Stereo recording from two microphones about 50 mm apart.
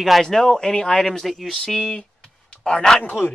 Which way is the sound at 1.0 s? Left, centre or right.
Centre.